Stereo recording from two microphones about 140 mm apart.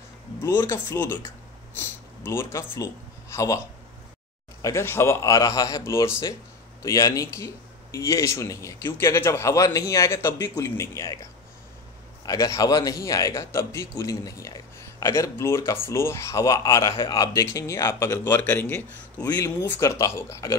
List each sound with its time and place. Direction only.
0.6 s a man's voice: 20° left (ahead or behind)
12.3 s a man's voice: 25° left (ahead or behind)